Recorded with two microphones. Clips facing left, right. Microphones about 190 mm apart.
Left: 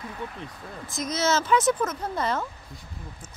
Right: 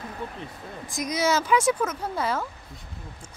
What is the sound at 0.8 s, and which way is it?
Speech, 15° right (ahead or behind).